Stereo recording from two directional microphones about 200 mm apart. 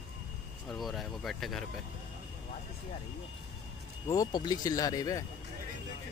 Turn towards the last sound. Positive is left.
turn(degrees=20)  # may be behind; listen again after turning